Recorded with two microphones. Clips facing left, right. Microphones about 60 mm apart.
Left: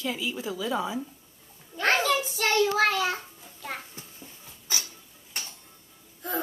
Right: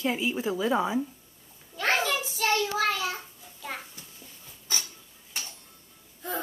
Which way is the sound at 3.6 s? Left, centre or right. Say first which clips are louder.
Left 1 dB; centre.